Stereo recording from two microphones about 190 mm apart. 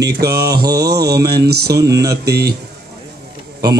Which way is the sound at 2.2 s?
60° right (ahead or behind).